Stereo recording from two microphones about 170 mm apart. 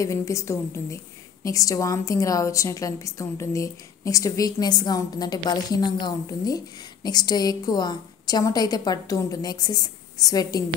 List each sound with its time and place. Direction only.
0.0 s a woman's voice: 20° left (ahead or behind)